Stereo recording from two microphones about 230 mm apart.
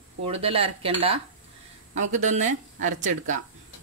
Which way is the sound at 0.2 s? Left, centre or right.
Right.